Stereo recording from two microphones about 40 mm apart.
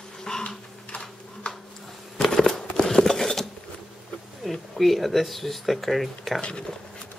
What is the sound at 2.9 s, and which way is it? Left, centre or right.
Mechanisms, centre.